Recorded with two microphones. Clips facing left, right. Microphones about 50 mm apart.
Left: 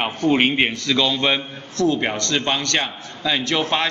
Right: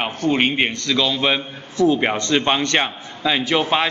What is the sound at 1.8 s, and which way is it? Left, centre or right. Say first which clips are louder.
A man's voice: right 3 dB; centre.